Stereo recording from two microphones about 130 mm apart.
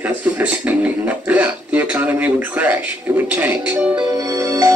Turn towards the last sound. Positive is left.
turn(degrees=-25)  # may be behind; listen again after turning